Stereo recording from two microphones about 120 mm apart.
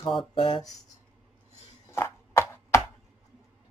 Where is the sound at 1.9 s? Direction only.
20° left (ahead or behind).